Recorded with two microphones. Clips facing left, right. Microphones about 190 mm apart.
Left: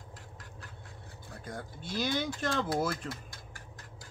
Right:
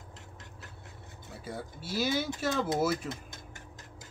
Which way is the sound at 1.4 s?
5° right (ahead or behind).